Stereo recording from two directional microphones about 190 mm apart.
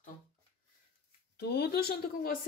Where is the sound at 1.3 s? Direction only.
60° left (ahead or behind).